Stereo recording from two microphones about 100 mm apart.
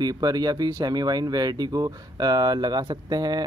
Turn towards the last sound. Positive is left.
turn(degrees=-40)  # may be behind; listen again after turning